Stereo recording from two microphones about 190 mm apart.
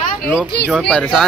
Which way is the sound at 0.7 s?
Centre (ahead or behind).